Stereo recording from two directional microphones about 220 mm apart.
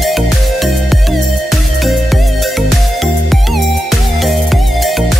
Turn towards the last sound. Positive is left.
turn(degrees=0)  # may be behind; listen again after turning